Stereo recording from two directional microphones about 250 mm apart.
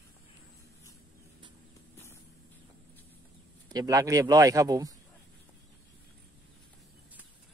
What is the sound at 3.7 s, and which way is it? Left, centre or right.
Speech, centre.